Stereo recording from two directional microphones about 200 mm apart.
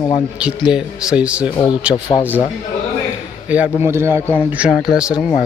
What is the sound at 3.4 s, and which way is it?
Speech, 5° right (ahead or behind).